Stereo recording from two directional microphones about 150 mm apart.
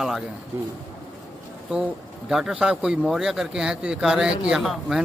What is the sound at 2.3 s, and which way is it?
Speech, centre (ahead or behind).